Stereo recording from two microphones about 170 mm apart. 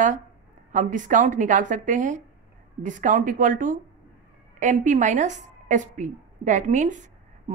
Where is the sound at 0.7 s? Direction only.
50° right (ahead or behind).